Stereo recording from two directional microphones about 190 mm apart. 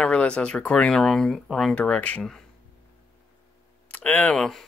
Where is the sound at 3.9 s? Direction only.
10° left (ahead or behind).